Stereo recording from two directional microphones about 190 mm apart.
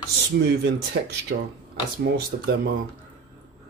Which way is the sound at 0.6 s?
60° right (ahead or behind).